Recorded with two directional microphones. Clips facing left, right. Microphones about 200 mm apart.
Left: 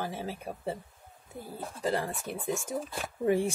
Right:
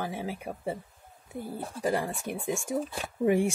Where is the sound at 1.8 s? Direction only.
15° right (ahead or behind).